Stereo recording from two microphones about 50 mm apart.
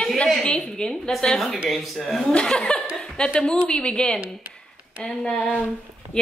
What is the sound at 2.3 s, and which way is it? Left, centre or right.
A woman's voice, centre.